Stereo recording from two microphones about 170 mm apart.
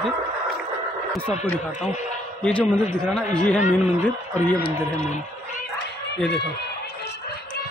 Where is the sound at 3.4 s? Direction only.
45° left (ahead or behind).